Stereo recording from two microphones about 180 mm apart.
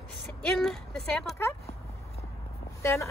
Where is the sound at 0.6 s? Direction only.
Centre (ahead or behind).